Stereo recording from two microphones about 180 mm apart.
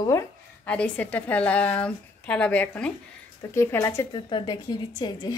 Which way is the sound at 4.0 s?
25° left (ahead or behind).